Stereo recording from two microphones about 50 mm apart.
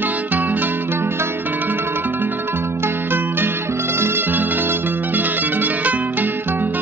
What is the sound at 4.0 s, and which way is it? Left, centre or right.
Music, right.